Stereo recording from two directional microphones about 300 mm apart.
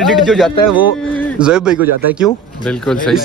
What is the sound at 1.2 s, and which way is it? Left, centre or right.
Speech, centre.